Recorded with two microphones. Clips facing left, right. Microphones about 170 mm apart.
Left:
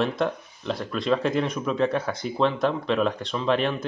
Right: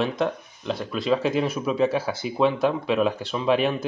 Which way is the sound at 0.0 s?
Centre (ahead or behind).